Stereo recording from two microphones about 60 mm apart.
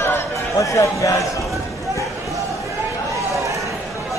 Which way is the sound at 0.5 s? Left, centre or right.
Left.